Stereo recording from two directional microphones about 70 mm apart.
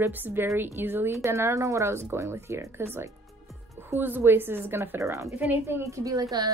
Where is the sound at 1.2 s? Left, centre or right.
Right.